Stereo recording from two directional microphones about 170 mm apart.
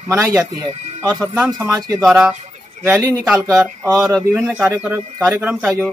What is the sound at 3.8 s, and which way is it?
Speech, 20° right (ahead or behind).